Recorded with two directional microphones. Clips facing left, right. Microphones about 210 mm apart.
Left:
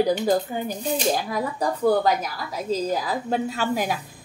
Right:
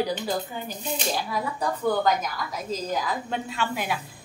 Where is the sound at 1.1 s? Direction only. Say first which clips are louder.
Left 3 dB; 40° left (ahead or behind).